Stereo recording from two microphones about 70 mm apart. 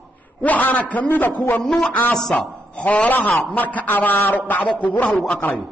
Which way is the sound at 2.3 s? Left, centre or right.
Centre.